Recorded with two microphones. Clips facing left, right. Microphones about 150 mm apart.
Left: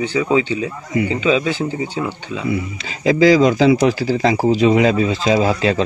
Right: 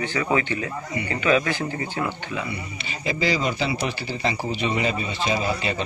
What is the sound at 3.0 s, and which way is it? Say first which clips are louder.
Speech: left 12 dB; 90° left.